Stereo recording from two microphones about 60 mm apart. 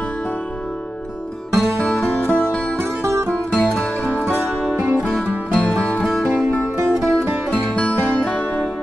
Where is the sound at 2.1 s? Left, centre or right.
Left.